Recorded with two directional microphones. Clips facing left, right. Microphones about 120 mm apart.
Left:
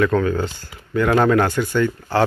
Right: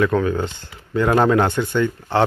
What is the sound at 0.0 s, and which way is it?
Speech, 10° right (ahead or behind).